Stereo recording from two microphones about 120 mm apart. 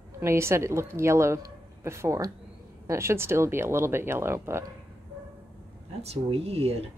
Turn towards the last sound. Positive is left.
turn(degrees=-55)  # may be behind; listen again after turning